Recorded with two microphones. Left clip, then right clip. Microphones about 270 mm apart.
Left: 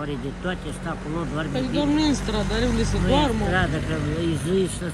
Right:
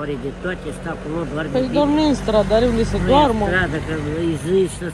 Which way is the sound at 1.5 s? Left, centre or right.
Left.